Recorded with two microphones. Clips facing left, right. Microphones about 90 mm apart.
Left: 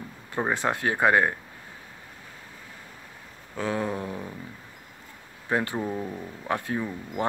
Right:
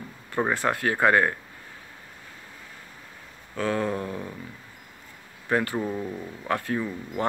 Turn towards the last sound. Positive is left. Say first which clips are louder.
# right 1 dB
turn(degrees=20)  # may be behind; listen again after turning